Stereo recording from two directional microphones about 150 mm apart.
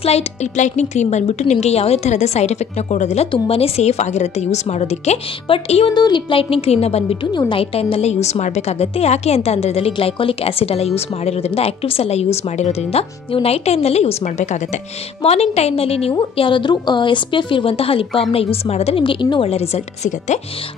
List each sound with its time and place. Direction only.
0.0 s a woman's voice: 45° left (ahead or behind)
5.9 s a woman's voice: 30° left (ahead or behind); by 20.3 s 50° left (ahead or behind)